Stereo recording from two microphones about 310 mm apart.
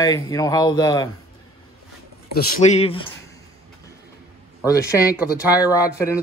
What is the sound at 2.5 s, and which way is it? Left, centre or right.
Speech, centre.